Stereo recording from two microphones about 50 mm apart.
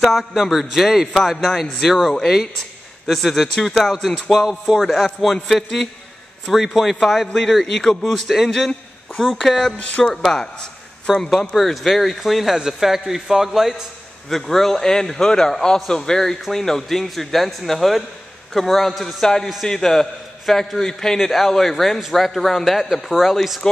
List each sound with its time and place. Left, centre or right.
0.0 s a man's voice: centre
4.3 s music: centre
4.9 s a man's voice: centre
9.8 s speech: left
10.1 s a man's voice: centre